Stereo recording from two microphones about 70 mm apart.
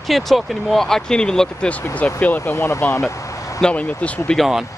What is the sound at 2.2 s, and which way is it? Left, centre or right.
Speech, left.